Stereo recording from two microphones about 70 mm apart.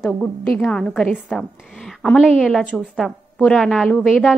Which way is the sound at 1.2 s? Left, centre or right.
Centre.